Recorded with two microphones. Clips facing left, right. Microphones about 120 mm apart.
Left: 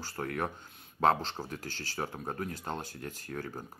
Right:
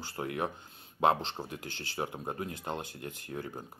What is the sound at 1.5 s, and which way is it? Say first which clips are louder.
Speech: left 1 dB; 20° right (ahead or behind).